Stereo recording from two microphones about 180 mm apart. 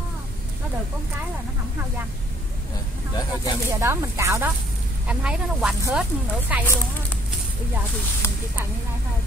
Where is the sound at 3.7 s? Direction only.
15° right (ahead or behind).